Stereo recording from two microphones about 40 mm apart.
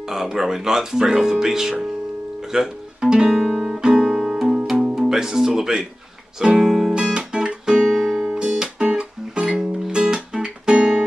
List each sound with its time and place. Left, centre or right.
0.4 s speech: centre
2.5 s guitar: centre
4.9 s speech: centre
6.5 s music: centre
7.0 s guitar: right
7.8 s music: centre
8.4 s music: centre